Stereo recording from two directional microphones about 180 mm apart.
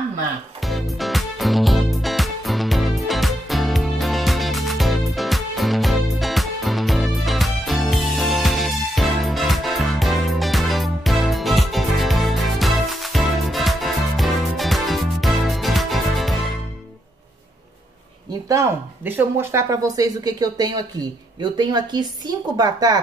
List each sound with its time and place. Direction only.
0.6 s music: centre (ahead or behind)
18.5 s a woman's voice: 15° right (ahead or behind)